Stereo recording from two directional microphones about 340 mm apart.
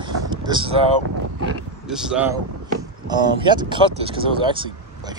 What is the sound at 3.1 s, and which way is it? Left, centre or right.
Speech, centre.